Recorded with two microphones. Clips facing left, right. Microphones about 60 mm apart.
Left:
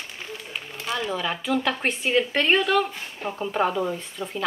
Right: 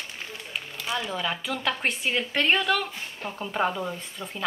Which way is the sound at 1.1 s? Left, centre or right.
Centre.